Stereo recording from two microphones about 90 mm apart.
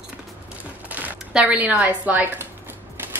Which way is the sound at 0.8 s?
20° right (ahead or behind).